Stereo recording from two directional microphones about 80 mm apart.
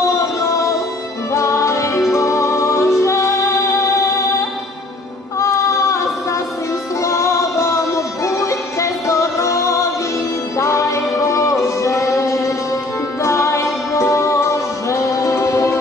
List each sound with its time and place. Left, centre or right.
0.2 s music: left
5.4 s music: left